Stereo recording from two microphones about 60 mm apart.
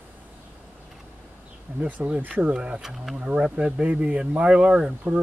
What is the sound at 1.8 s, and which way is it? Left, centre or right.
Speech, right.